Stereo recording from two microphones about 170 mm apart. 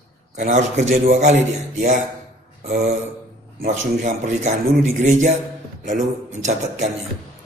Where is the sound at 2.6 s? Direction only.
45° right (ahead or behind).